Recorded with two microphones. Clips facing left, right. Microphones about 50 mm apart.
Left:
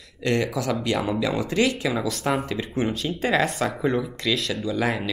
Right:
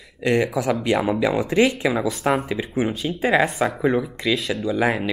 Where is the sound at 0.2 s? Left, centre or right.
Centre.